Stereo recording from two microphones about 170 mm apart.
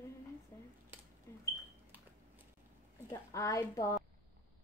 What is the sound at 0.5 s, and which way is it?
Speech, 15° left (ahead or behind).